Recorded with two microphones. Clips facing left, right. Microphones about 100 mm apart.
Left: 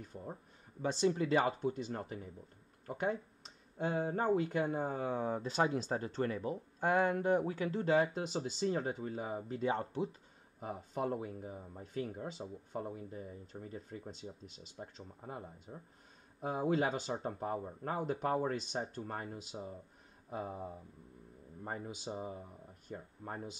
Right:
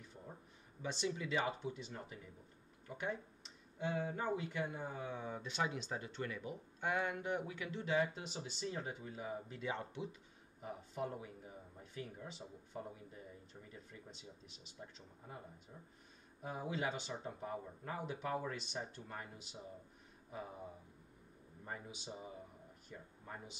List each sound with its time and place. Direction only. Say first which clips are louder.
0.0 s speech: left 8 dB; 45° left (ahead or behind)
10.6 s speech: left 5 dB; 55° left (ahead or behind)
21.6 s speech: left 6 dB; 45° left (ahead or behind)